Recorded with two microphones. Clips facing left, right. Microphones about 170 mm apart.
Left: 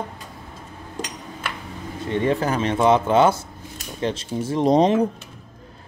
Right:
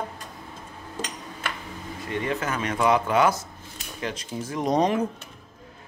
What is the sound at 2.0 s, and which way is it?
Speech, 30° left (ahead or behind).